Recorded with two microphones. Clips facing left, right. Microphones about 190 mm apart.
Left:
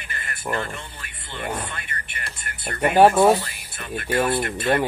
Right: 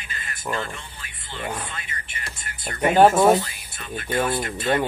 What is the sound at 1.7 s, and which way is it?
Speech, 55° left (ahead or behind).